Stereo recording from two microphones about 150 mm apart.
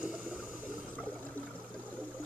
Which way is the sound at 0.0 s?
5° right (ahead or behind).